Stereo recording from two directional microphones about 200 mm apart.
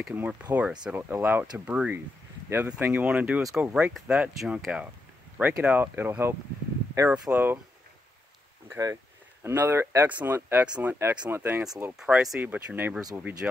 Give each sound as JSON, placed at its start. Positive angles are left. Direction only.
{"t": 0.0, "sound": "speech", "side_deg": -5}
{"t": 8.6, "sound": "a sound", "side_deg": -15}
{"t": 9.4, "sound": "speech", "side_deg": -10}